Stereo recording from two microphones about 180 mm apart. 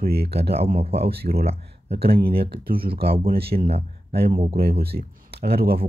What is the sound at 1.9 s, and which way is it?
Speech, 30° right (ahead or behind).